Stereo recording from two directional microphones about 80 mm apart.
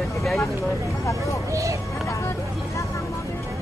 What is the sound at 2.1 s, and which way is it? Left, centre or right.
Vehicle, left.